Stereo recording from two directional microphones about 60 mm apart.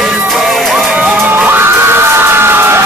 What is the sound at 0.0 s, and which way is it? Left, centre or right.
Music, centre.